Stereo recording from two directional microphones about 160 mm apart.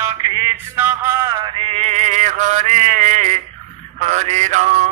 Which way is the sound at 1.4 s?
35° right (ahead or behind).